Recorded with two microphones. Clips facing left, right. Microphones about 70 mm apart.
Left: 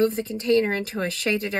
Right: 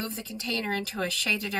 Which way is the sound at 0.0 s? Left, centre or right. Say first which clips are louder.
Left 13 dB; left.